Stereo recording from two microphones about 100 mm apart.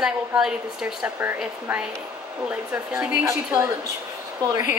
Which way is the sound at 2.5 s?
15° right (ahead or behind).